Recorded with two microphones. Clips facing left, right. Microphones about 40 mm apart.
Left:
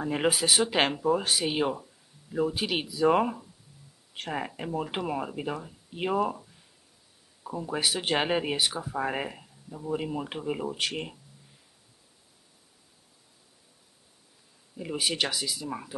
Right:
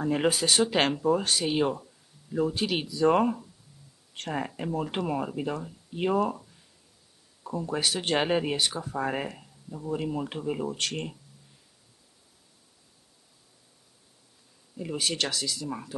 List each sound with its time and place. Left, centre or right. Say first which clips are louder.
0.0 s speech: right 1 dB; centre
14.8 s speech: left 1 dB; centre